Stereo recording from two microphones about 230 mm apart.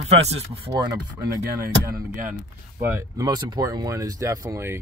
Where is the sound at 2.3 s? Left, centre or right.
Centre.